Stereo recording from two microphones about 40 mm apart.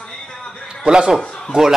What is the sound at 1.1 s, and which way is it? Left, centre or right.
Speech, centre.